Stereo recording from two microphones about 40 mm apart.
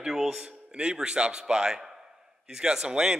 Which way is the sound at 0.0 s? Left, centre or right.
Centre.